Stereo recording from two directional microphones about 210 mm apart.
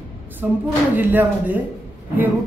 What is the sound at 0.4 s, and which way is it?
A man's voice, 10° right (ahead or behind).